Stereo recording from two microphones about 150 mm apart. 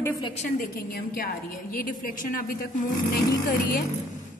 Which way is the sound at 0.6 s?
75° left (ahead or behind).